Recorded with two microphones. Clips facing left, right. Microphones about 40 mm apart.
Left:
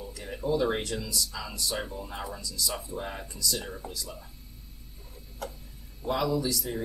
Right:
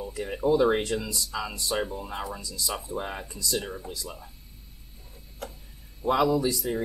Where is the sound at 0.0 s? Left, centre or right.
Right.